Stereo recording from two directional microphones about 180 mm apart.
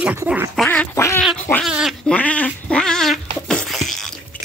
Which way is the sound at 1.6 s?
Centre (ahead or behind).